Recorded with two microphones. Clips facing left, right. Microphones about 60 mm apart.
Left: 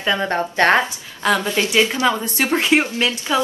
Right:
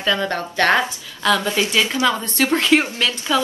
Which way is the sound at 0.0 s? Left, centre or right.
Left.